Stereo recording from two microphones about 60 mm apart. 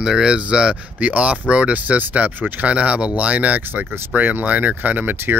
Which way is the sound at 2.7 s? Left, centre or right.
Right.